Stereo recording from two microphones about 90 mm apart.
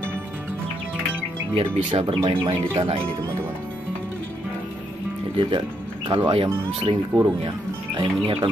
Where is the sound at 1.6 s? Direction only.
90° right.